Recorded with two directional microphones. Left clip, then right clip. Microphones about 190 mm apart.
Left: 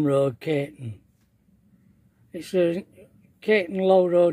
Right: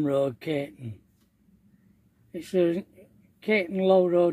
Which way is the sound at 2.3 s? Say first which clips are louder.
Left 2 dB; 15° left (ahead or behind).